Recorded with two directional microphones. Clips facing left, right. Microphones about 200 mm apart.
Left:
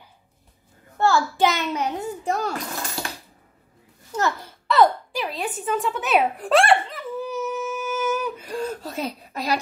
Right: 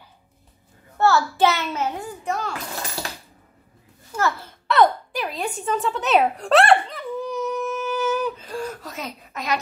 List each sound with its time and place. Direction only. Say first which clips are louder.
0.9 s a child's voice: right 1 dB; 15° left (ahead or behind)
2.2 s a child's voice: left 2 dB; 40° left (ahead or behind)
4.1 s a child's voice: even; 20° left (ahead or behind)
4.6 s a sound: even; centre (ahead or behind); by 8.7 s 15° left (ahead or behind)
8.8 s speech: left 5 dB; 30° left (ahead or behind)